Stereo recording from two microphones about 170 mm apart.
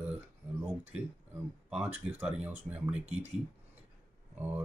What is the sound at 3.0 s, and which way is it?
Speech, 40° right (ahead or behind).